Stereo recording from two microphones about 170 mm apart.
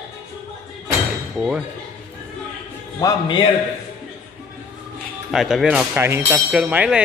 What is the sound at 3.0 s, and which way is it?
Speech, 25° left (ahead or behind).